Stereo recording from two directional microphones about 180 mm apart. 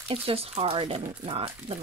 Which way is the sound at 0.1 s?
35° right (ahead or behind).